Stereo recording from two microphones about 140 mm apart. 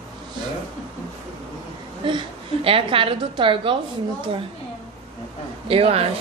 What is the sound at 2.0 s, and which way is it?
A woman's voice, 35° right (ahead or behind).